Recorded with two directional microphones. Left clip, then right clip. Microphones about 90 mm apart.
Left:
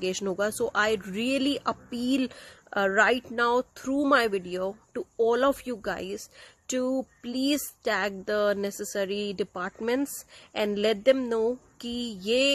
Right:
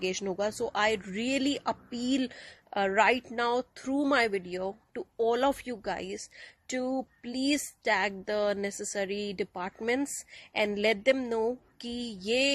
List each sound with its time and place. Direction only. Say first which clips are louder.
0.0 s speech: left 3 dB; 50° left (ahead or behind)